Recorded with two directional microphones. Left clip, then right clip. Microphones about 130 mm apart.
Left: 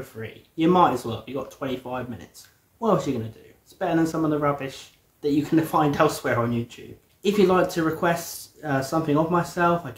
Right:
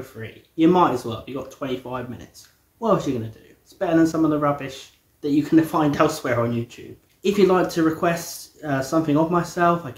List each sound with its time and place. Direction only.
0.2 s speech: 20° left (ahead or behind)